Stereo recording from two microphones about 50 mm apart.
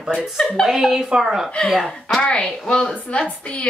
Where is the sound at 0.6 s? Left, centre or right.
Centre.